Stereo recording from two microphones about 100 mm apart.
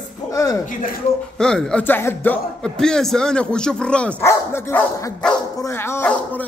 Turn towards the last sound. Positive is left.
turn(degrees=25)  # may be behind; listen again after turning